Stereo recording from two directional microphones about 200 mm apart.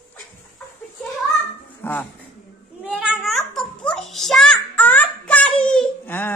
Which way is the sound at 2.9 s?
5° right (ahead or behind).